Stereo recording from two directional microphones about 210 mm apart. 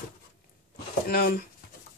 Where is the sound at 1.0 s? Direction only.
45° left (ahead or behind).